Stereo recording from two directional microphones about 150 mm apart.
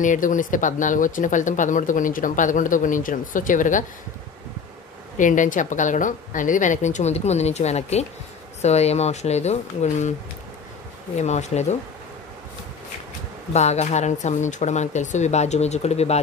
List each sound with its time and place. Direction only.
0.0 s speech: 60° left (ahead or behind)
5.1 s speech: 60° left (ahead or behind)
11.1 s speech: 50° left (ahead or behind)
13.5 s speech: 45° left (ahead or behind)